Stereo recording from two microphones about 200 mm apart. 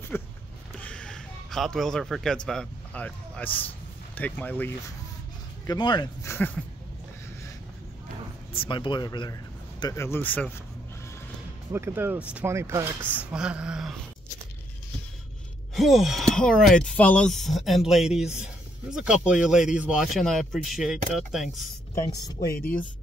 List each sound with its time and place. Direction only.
0.1 s a sound: 10° left (ahead or behind)
0.7 s speech: 5° left (ahead or behind)
5.7 s speech: 20° left (ahead or behind)
8.5 s speech: 25° left (ahead or behind); by 10.5 s 10° left (ahead or behind)
11.7 s speech: 10° right (ahead or behind)
15.7 s speech: centre (ahead or behind)
21.9 s speech: 15° left (ahead or behind)